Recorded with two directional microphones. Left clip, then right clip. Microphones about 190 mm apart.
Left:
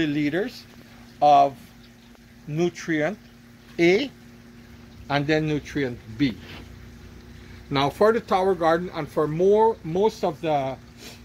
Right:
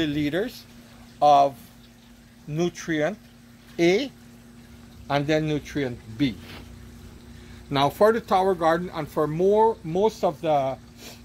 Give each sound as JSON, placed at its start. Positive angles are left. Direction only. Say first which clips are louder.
{"t": 0.0, "sound": "speech", "louder": "left 1 dB", "side_deg": -20}
{"t": 2.5, "sound": "speech", "louder": "left 2 dB", "side_deg": -15}
{"t": 5.0, "sound": "speech", "louder": "even", "side_deg": -20}
{"t": 7.7, "sound": "speech", "louder": "even", "side_deg": -35}